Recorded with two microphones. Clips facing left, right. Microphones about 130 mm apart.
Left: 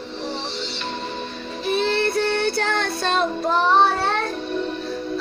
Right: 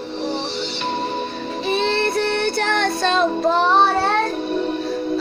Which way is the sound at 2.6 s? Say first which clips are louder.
Right 3 dB; 90° right.